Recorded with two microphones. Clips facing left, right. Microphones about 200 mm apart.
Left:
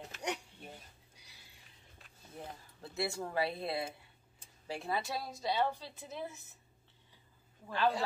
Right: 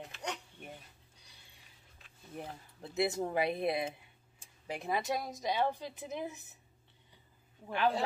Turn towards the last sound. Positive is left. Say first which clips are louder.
# right 1 dB
turn(degrees=-15)  # may be behind; listen again after turning